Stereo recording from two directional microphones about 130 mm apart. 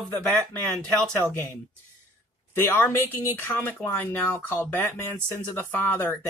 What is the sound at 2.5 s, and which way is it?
Speech, 15° left (ahead or behind).